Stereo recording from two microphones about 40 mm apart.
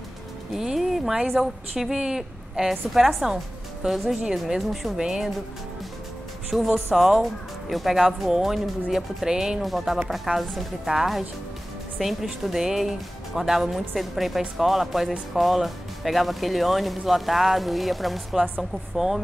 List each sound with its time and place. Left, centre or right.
0.6 s music: centre
1.2 s speech: centre
1.8 s a woman's voice: centre
2.7 s speech: centre
4.6 s speech: centre
4.9 s speech: centre
6.5 s speech: centre
9.6 s speech: centre